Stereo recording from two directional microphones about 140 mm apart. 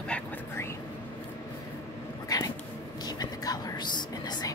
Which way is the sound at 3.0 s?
25° left (ahead or behind).